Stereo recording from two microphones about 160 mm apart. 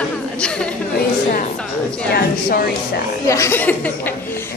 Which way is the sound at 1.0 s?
60° left (ahead or behind).